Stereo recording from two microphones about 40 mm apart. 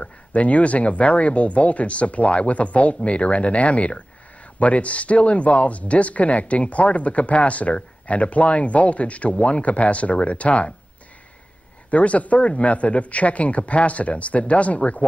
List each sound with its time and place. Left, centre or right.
0.0 s speech: left
11.9 s speech: left